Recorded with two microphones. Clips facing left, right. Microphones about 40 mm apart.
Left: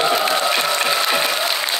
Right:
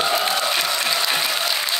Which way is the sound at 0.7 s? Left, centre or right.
Left.